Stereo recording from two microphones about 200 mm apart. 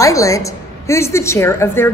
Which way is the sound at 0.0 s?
15° left (ahead or behind).